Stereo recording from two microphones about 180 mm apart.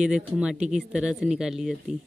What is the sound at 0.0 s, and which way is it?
A man's voice, 5° right (ahead or behind).